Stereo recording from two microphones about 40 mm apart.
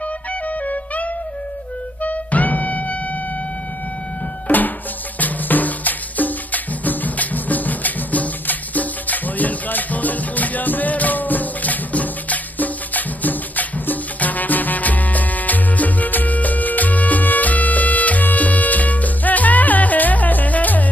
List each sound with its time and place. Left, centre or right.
0.3 s music: left
4.5 s music: left